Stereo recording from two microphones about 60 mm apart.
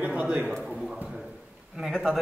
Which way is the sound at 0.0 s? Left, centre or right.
Right.